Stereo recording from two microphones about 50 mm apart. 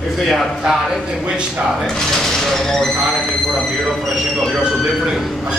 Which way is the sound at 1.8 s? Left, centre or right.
Centre.